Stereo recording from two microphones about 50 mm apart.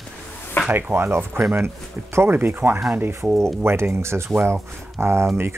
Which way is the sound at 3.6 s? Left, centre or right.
Right.